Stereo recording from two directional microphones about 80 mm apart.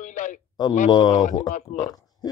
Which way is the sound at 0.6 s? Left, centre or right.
Left.